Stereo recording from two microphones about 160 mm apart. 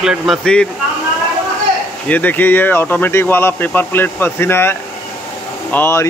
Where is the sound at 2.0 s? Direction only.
10° left (ahead or behind).